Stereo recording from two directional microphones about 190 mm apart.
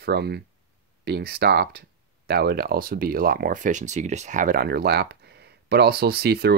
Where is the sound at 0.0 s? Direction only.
60° right (ahead or behind).